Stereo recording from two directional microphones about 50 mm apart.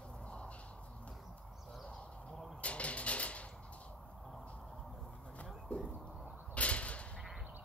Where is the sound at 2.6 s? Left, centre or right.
Left.